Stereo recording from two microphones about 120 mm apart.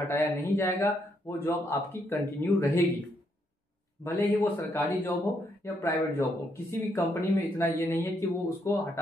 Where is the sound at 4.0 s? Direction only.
20° left (ahead or behind).